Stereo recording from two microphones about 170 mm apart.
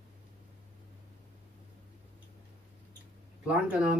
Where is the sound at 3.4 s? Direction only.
5° right (ahead or behind).